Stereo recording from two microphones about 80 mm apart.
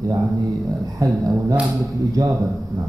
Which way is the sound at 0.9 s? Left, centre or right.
Right.